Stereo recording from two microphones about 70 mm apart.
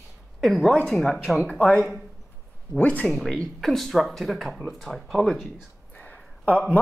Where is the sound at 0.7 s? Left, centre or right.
Centre.